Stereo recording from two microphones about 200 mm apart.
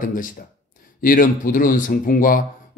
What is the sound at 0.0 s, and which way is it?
Speech, 45° left (ahead or behind).